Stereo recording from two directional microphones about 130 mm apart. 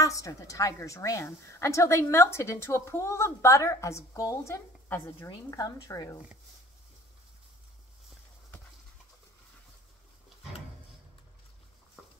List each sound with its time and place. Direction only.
0.0 s a woman's voice: 25° left (ahead or behind)